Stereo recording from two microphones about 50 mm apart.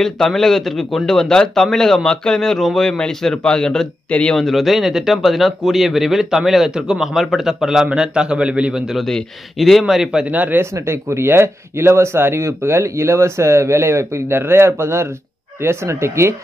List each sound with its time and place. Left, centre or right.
0.0 s speech: centre
4.1 s speech: left
4.4 s a man's voice: centre; by 8.7 s right
8.9 s speech: centre
10.3 s speech: right
10.6 s speech: right